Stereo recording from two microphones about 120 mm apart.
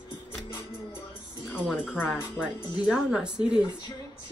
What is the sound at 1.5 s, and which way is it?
Speech, centre (ahead or behind).